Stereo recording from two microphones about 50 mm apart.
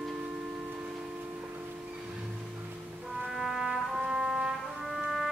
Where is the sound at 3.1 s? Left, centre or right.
Centre.